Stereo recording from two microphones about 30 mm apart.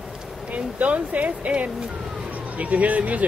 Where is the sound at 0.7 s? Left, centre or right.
Right.